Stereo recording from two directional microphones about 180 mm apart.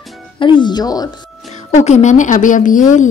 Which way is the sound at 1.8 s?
40° left (ahead or behind).